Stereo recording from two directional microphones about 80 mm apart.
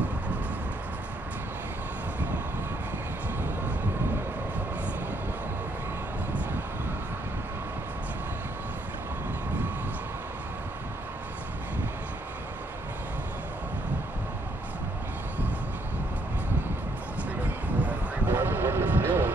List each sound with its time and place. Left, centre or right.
17.8 s vehicle: right